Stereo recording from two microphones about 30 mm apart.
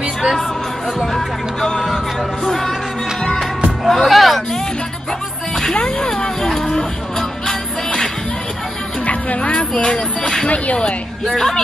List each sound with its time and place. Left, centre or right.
1.1 s speech: centre
2.4 s music: centre
3.8 s music: centre
5.9 s a sound: left
6.5 s music: centre
9.0 s a sound: left
9.8 s speech: left
10.5 s speech: left
11.2 s a woman's voice: centre